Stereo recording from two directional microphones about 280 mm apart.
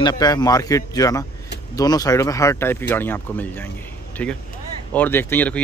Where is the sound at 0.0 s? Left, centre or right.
Centre.